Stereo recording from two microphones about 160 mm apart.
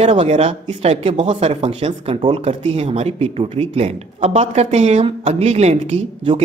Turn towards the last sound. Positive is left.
turn(degrees=-40)  # may be behind; listen again after turning